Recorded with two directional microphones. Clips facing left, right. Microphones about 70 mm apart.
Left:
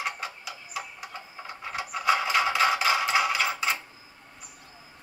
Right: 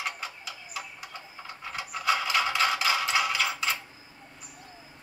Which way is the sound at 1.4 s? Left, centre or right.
Left.